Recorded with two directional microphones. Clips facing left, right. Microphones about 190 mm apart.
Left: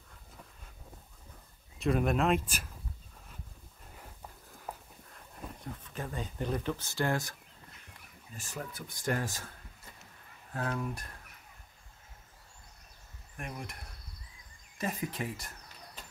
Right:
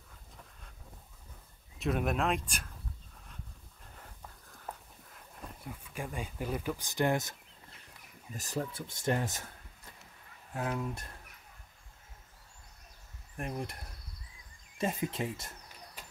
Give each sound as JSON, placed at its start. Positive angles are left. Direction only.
{"t": 1.8, "sound": "speech", "side_deg": 0}
{"t": 4.7, "sound": "dog", "side_deg": 10}
{"t": 5.1, "sound": "a sound", "side_deg": -5}
{"t": 8.4, "sound": "speech", "side_deg": -35}
{"t": 10.5, "sound": "speech", "side_deg": -15}
{"t": 13.4, "sound": "speech", "side_deg": -35}
{"t": 14.8, "sound": "speech", "side_deg": -25}